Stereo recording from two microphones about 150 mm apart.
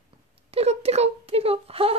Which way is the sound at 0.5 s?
45° right (ahead or behind).